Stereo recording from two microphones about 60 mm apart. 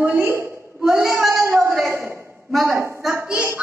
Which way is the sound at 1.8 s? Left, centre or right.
Right.